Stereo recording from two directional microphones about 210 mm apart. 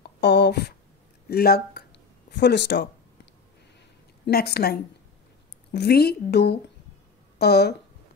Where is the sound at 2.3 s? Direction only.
55° left (ahead or behind).